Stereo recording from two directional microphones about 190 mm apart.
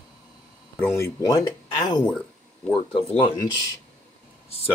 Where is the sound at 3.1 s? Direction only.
20° left (ahead or behind).